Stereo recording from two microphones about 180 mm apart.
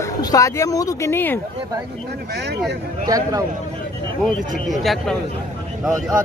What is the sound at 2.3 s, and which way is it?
Speech, 65° right (ahead or behind).